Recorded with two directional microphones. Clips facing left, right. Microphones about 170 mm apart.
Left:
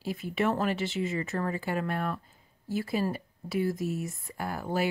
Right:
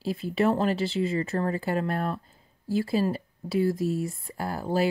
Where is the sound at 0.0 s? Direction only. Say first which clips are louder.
Right 4 dB; 30° right (ahead or behind).